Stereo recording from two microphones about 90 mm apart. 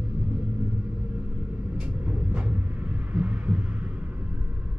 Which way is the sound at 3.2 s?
15° right (ahead or behind).